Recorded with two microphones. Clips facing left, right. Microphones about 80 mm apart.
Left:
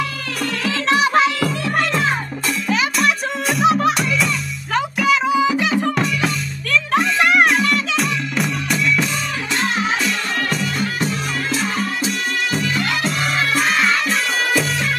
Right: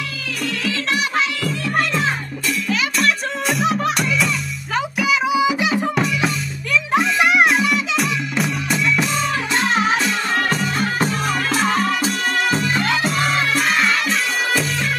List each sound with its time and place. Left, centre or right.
0.7 s music: left
3.0 s music: centre
10.0 s music: right
11.5 s music: right
12.4 s music: right
13.0 s music: centre